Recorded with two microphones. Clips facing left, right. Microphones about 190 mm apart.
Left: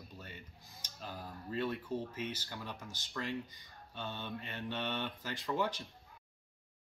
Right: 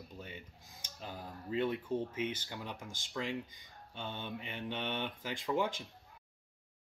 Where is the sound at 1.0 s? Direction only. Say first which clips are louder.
Even; 20° right (ahead or behind).